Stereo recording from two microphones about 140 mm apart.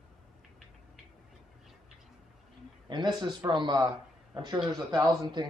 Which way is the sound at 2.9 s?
30° right (ahead or behind).